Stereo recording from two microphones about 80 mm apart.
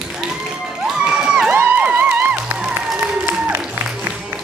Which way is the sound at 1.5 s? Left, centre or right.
Right.